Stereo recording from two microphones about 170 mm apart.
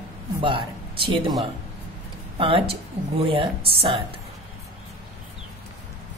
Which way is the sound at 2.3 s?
30° right (ahead or behind).